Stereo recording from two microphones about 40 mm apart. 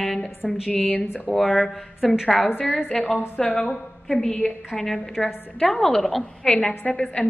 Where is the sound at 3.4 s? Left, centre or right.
Left.